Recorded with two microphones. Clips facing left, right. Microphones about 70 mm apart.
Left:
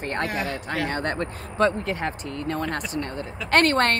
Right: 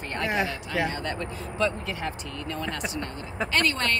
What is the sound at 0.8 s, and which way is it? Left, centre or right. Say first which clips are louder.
Speech: left 4 dB; left.